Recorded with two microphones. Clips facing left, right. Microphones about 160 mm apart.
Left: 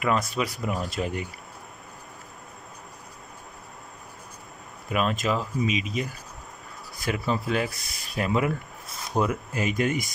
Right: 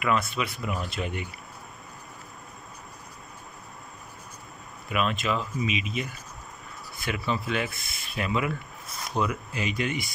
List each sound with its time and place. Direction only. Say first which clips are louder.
0.0 s speech: left 1 dB; 40° left (ahead or behind)
4.8 s speech: left 2 dB; 40° left (ahead or behind)